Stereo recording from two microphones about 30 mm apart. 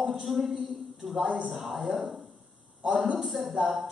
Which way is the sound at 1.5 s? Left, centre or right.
Centre.